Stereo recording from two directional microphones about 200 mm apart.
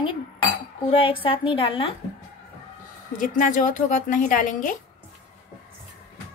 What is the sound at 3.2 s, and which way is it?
Speech, 40° left (ahead or behind).